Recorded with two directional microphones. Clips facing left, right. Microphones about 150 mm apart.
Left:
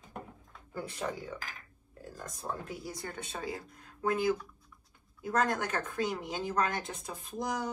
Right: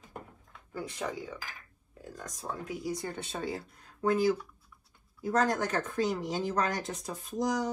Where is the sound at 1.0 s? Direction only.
5° left (ahead or behind).